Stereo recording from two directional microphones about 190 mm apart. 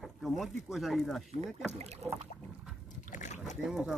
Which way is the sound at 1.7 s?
35° right (ahead or behind).